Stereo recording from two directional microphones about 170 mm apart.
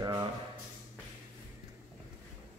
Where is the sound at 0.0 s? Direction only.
25° right (ahead or behind).